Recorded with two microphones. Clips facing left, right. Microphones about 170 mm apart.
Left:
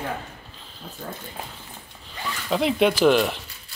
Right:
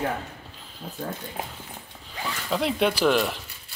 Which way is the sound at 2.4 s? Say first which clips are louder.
Left 4 dB; 5° left (ahead or behind).